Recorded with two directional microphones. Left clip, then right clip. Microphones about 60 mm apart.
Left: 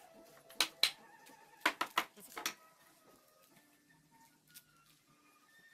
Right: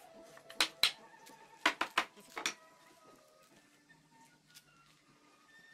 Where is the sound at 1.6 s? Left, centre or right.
Right.